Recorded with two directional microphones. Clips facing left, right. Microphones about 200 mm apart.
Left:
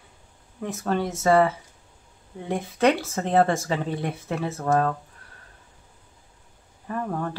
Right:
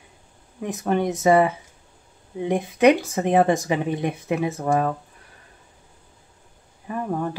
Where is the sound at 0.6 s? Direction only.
15° right (ahead or behind).